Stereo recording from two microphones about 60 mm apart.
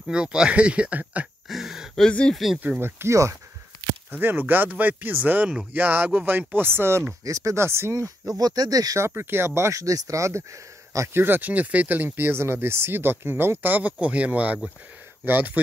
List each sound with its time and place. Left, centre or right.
0.1 s speech: centre
1.5 s a sound: centre
2.0 s speech: centre
2.3 s speech: centre
2.8 s speech: right
4.1 s speech: right
7.2 s speech: right
7.5 s speech: right
8.4 s speech: right
9.0 s speech: right
11.1 s speech: right